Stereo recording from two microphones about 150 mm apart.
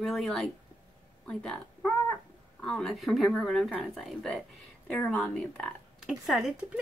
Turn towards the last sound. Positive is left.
turn(degrees=-5)  # may be behind; listen again after turning